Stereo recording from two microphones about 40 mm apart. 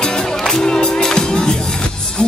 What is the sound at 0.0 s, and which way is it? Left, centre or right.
Music, centre.